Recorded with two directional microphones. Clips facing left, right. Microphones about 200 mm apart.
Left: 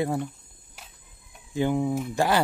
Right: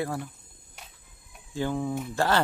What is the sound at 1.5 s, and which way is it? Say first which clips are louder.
Speech: left 4 dB; 15° left (ahead or behind).